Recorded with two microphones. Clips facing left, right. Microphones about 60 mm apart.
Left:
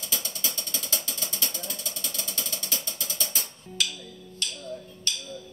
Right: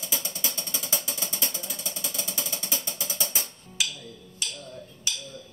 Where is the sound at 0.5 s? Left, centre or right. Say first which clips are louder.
Right 1 dB; centre.